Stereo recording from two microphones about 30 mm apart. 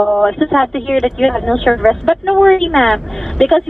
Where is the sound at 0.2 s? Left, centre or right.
Centre.